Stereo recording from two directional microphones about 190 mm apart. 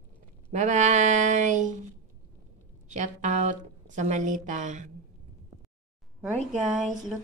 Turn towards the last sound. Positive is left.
turn(degrees=0)  # may be behind; listen again after turning